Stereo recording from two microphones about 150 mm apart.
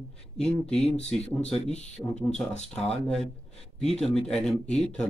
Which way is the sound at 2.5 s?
45° left (ahead or behind).